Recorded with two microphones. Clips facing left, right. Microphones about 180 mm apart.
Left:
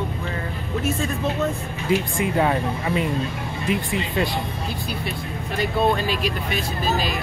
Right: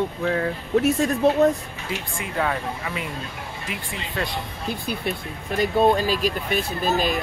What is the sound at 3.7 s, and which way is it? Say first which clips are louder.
Speech: left 10 dB; 20° left (ahead or behind).